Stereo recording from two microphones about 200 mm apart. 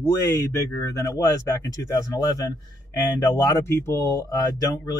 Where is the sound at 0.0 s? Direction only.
15° left (ahead or behind).